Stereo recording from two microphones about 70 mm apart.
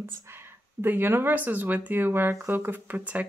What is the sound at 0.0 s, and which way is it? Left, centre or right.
Speech, right.